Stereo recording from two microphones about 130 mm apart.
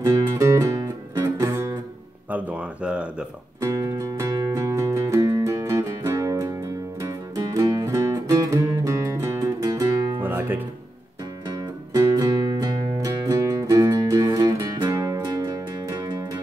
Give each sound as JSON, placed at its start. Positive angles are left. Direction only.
{"t": 0.0, "sound": "music", "side_deg": -25}
{"t": 2.3, "sound": "speech", "side_deg": -10}
{"t": 3.6, "sound": "music", "side_deg": -25}
{"t": 10.2, "sound": "music", "side_deg": -15}
{"t": 11.4, "sound": "music", "side_deg": -30}